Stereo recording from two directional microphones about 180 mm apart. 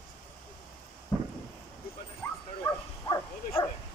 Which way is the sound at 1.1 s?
15° left (ahead or behind).